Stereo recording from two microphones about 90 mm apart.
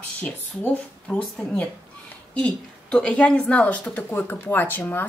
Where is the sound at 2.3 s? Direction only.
10° left (ahead or behind).